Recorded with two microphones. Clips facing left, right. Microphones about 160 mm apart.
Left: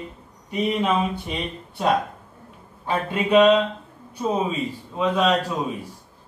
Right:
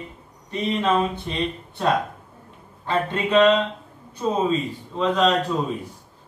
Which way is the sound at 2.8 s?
10° left (ahead or behind).